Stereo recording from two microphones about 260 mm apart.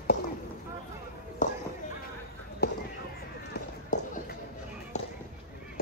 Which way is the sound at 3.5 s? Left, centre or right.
Left.